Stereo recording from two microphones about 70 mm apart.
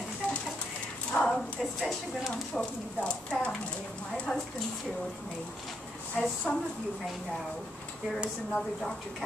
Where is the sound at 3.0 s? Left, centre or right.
Centre.